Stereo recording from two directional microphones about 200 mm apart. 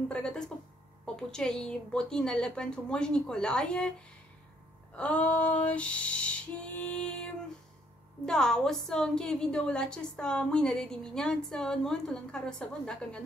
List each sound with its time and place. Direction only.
0.1 s a woman's voice: 5° left (ahead or behind)
4.9 s female singing: 5° left (ahead or behind)
8.3 s a woman's voice: 5° left (ahead or behind)